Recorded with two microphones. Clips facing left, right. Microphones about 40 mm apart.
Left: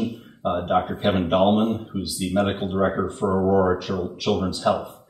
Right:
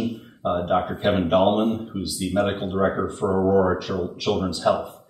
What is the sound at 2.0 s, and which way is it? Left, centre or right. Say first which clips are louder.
Speech: left 1 dB; centre.